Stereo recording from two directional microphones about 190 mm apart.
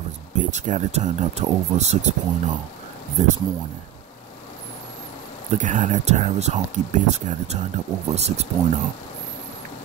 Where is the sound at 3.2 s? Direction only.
35° right (ahead or behind).